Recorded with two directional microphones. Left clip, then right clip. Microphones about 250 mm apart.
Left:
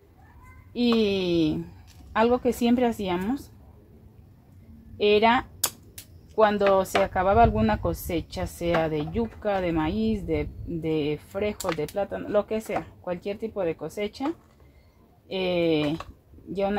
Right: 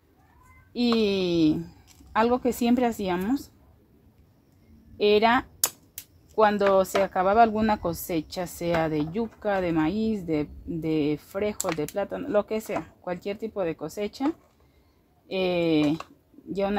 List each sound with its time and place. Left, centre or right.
0.9 s speech: right
4.9 s a woman's voice: right
15.2 s speech: right